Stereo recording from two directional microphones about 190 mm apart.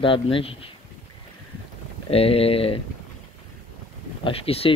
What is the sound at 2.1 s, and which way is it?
Speech, 30° left (ahead or behind).